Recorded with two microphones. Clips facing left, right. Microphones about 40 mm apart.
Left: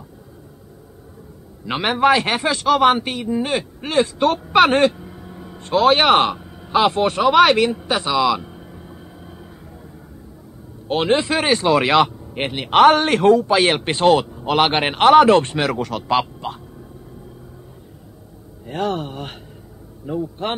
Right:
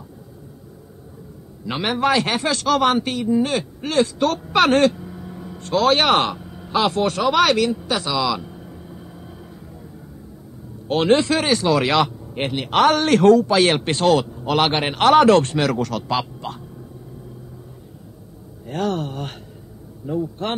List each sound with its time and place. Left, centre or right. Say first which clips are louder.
1.7 s a man's voice: left 4 dB; centre
5.6 s a man's voice: left 2 dB; centre
10.9 s a man's voice: right 1 dB; centre
18.7 s a man's voice: even; centre